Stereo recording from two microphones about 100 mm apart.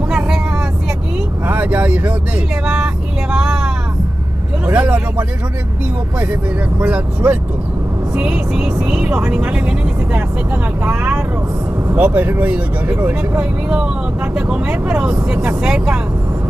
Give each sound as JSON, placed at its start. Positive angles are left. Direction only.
{"t": 1.5, "sound": "speech", "side_deg": -15}
{"t": 2.6, "sound": "vehicle", "side_deg": -5}
{"t": 4.6, "sound": "speech", "side_deg": -15}
{"t": 6.8, "sound": "speech", "side_deg": -15}
{"t": 11.9, "sound": "speech", "side_deg": -20}